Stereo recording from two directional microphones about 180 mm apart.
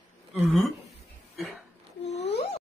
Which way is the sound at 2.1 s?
35° left (ahead or behind).